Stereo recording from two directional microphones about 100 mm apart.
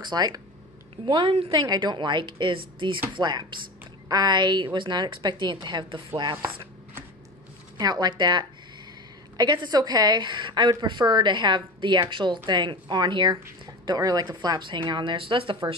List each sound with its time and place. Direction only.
0.0 s a woman's voice: 45° right (ahead or behind)
1.2 s speech: 80° right
1.5 s a woman's voice: 45° right (ahead or behind)
3.2 s a woman's voice: 45° right (ahead or behind)
7.7 s a woman's voice: 40° right (ahead or behind); by 15.7 s 60° right (ahead or behind)